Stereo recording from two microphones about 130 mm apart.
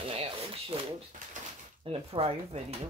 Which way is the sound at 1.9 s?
50° right (ahead or behind).